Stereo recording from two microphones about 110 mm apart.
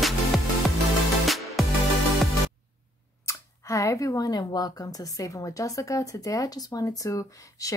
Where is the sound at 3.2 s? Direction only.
30° left (ahead or behind).